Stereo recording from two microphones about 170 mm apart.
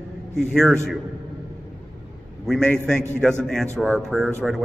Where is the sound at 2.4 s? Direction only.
5° left (ahead or behind).